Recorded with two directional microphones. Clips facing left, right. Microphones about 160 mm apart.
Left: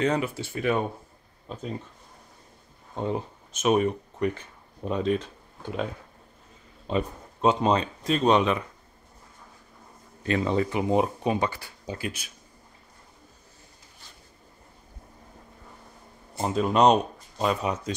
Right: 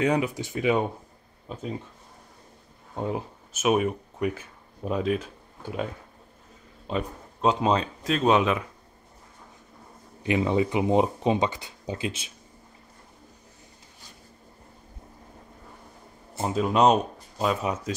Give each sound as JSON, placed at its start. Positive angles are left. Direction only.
{"t": 0.0, "sound": "speech", "side_deg": -15}
{"t": 3.0, "sound": "speech", "side_deg": -5}
{"t": 6.9, "sound": "speech", "side_deg": 0}
{"t": 10.2, "sound": "speech", "side_deg": -15}
{"t": 16.3, "sound": "speech", "side_deg": -5}